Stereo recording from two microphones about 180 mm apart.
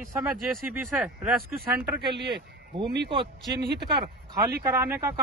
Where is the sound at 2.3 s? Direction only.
25° right (ahead or behind).